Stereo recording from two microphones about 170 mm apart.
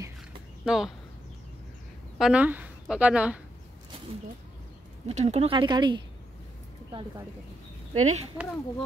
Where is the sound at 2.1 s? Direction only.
5° right (ahead or behind).